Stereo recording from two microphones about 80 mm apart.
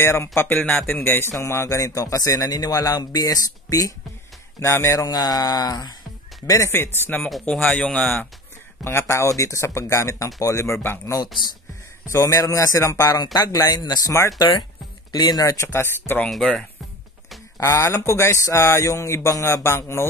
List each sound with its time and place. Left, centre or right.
0.0 s a man's voice: left
4.6 s speech: left
5.0 s a sound: left
6.4 s a man's voice: left
13.1 s a man's voice: left
15.1 s a sound: left
15.4 s speech: left
16.3 s speech: centre
17.6 s speech: left